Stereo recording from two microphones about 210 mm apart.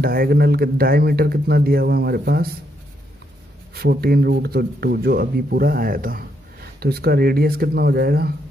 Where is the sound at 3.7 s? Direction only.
45° right (ahead or behind).